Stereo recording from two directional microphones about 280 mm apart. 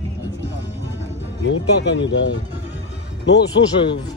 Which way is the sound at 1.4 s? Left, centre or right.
Left.